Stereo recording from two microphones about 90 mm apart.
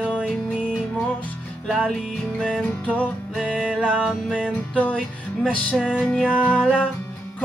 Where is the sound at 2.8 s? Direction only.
15° left (ahead or behind).